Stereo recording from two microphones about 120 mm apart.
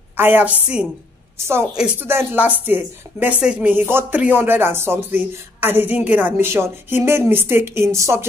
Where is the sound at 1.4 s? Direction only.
20° right (ahead or behind).